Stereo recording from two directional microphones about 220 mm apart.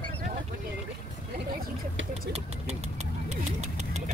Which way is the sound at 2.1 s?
30° right (ahead or behind).